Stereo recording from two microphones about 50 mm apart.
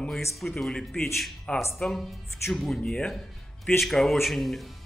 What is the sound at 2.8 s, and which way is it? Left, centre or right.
Speech, left.